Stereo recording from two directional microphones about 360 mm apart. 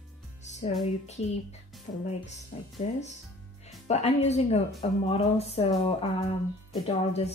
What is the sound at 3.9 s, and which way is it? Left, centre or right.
A woman's voice, centre.